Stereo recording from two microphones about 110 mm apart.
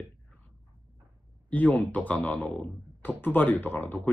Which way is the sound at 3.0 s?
15° left (ahead or behind).